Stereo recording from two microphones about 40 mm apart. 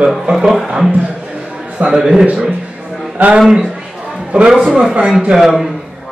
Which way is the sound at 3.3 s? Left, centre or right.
Centre.